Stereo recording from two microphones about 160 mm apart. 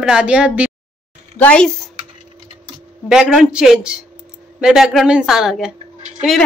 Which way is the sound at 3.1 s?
Centre (ahead or behind).